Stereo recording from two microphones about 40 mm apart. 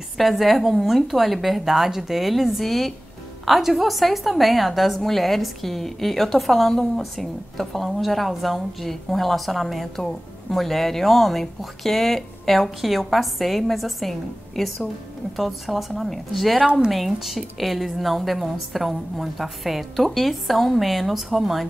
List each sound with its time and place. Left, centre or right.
0.2 s speech: centre